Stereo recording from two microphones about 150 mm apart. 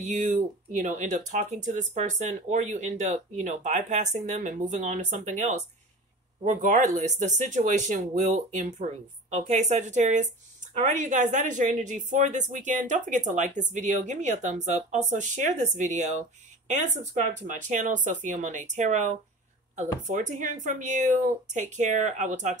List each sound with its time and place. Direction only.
0.0 s speech: 55° right (ahead or behind)